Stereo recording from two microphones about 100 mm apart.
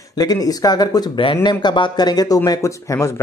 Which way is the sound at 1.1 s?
55° left (ahead or behind).